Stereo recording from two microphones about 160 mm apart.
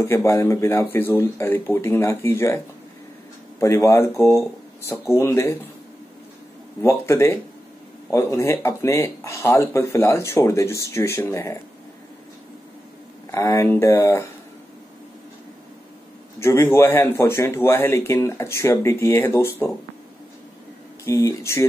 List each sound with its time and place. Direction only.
0.0 s speech: 15° left (ahead or behind)
6.8 s speech: 15° left (ahead or behind)
13.3 s speech: 20° left (ahead or behind)
16.3 s speech: 15° left (ahead or behind)
21.0 s speech: 20° left (ahead or behind)